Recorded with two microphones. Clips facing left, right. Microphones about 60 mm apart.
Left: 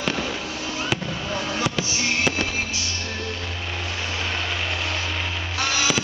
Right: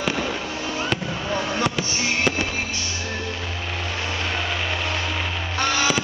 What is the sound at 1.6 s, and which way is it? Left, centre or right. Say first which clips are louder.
Fireworks: right 1 dB; centre.